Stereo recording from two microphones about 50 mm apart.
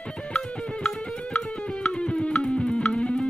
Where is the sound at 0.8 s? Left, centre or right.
Centre.